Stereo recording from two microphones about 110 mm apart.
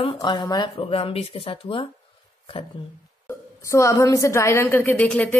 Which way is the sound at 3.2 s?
25° left (ahead or behind).